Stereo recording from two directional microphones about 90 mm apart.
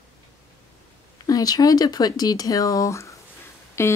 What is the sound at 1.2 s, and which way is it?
Speech, 45° left (ahead or behind).